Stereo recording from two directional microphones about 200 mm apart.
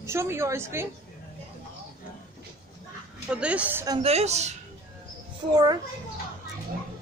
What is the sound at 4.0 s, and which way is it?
Speech, 30° right (ahead or behind).